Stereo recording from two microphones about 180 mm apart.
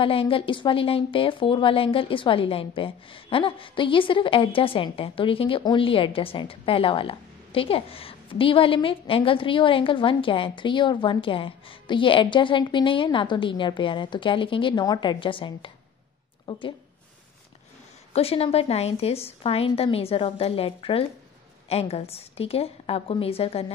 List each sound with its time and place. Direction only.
0.0 s a woman's voice: 30° left (ahead or behind)
18.1 s a woman's voice: 35° left (ahead or behind)